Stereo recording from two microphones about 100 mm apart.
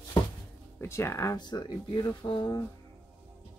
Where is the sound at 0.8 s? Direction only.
25° left (ahead or behind).